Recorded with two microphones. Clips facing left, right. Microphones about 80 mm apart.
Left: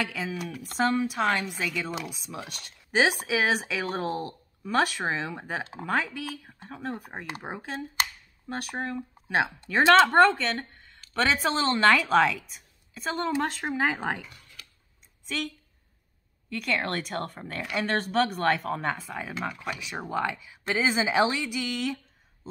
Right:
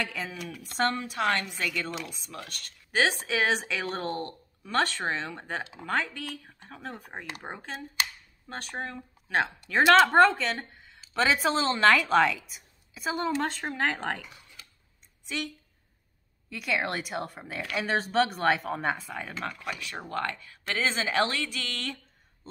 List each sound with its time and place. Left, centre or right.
0.0 s a woman's voice: centre
5.6 s speech: left
5.9 s a woman's voice: centre
13.8 s speech: centre
14.2 s computer keyboard: centre
15.2 s speech: centre